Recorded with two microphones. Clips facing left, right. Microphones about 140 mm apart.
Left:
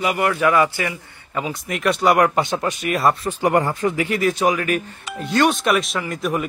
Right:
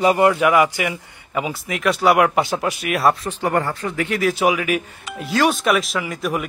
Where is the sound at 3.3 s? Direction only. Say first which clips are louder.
Left 2 dB; 15° left (ahead or behind).